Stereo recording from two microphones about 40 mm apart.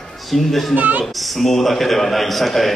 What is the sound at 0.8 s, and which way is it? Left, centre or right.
Speech, right.